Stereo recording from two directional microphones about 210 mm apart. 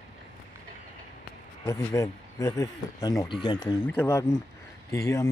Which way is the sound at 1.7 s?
15° left (ahead or behind).